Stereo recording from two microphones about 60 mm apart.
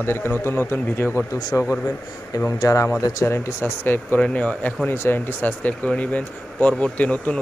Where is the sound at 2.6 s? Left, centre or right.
Left.